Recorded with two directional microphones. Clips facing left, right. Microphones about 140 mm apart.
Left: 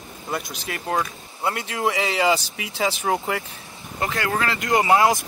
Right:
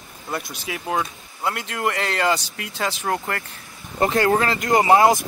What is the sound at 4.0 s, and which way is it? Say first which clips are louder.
Speech: right 6 dB; 35° right (ahead or behind).